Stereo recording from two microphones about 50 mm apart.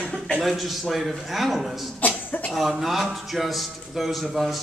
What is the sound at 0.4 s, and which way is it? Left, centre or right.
A man's voice, centre.